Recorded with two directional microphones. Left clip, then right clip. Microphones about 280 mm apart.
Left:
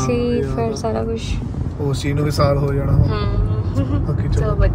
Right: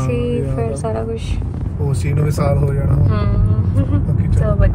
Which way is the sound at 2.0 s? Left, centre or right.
Left.